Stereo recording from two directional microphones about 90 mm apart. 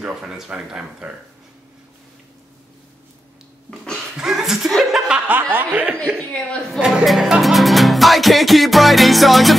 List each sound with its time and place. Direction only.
0.0 s speech: 10° right (ahead or behind)
4.2 s chuckle: 5° right (ahead or behind)
5.0 s speech: 10° right (ahead or behind)
5.4 s speech: 20° right (ahead or behind)
6.1 s a woman's voice: 10° left (ahead or behind)
6.8 s music: 5° right (ahead or behind)